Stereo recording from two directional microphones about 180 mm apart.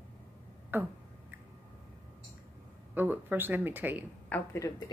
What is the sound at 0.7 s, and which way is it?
Speech, 10° right (ahead or behind).